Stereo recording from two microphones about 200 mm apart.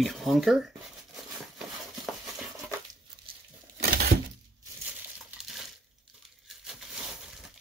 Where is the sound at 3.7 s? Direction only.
45° right (ahead or behind).